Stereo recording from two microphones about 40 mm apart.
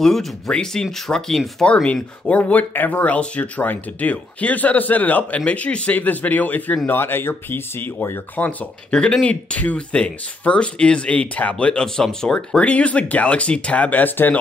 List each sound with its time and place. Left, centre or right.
0.0 s speech: centre
1.6 s speech: left
2.2 s speech: left
5.4 s speech: left
5.9 s speech: left
6.9 s speech: left
8.4 s speech: left
11.8 s speech: centre
12.5 s speech: left